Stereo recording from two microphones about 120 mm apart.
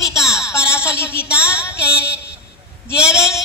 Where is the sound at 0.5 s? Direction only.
20° left (ahead or behind).